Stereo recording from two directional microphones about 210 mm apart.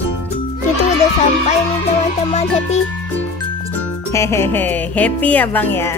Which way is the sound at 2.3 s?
30° left (ahead or behind).